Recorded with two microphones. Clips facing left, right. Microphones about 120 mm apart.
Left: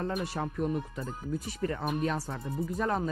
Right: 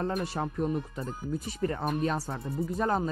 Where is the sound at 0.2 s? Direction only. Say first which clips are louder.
Right 1 dB; 25° right (ahead or behind).